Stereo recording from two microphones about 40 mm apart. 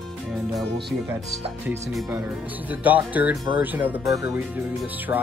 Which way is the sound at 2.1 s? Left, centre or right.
Right.